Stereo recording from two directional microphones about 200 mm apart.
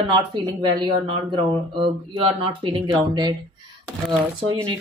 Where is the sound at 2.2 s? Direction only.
25° right (ahead or behind).